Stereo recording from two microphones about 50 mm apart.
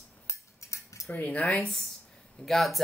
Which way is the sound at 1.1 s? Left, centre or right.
Left.